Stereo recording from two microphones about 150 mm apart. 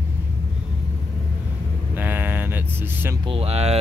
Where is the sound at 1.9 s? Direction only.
15° right (ahead or behind).